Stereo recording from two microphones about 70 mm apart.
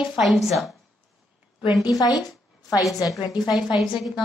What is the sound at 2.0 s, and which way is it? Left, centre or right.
Speech, left.